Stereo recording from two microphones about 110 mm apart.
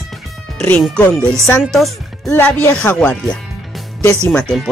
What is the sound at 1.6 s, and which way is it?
Speech, centre (ahead or behind).